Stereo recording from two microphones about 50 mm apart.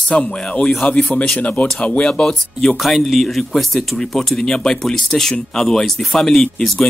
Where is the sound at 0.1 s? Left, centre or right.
Left.